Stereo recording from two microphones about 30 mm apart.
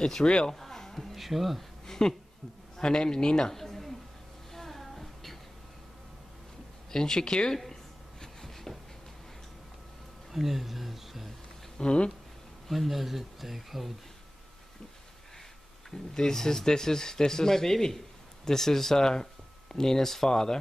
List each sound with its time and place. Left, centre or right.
0.0 s a man's voice: left
0.6 s music: centre
1.0 s speech: centre
1.9 s a man's voice: left
3.5 s a sound: centre
6.9 s a man's voice: left
7.5 s a sound: centre
10.3 s speech: centre
11.8 s speech: left
12.6 s speech: centre
15.9 s a man's voice: centre